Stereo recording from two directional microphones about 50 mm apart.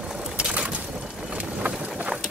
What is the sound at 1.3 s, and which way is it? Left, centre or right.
Vehicle, right.